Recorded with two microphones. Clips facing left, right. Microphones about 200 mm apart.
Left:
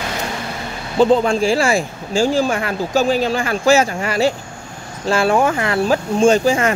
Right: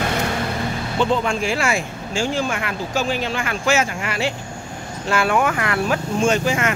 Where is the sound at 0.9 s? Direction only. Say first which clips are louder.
Left 8 dB; 35° left (ahead or behind).